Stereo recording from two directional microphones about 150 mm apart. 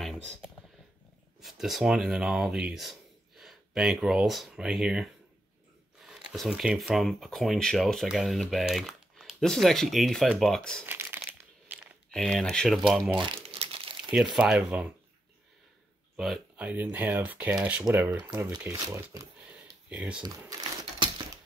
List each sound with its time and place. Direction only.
1.4 s speech: centre (ahead or behind)
10.9 s crumpling: 15° right (ahead or behind)
12.1 s speech: centre (ahead or behind)
13.2 s crumpling: 35° right (ahead or behind)
14.1 s speech: 5° right (ahead or behind)
16.2 s speech: 5° right (ahead or behind)
19.9 s speech: 10° right (ahead or behind)
20.2 s speech: 25° right (ahead or behind)